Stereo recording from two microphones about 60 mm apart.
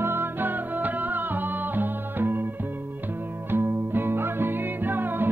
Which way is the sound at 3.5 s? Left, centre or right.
Right.